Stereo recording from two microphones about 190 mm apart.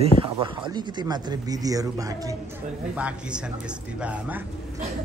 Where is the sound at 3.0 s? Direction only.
5° right (ahead or behind).